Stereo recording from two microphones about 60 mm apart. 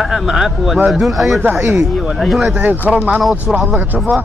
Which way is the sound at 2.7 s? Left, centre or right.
Right.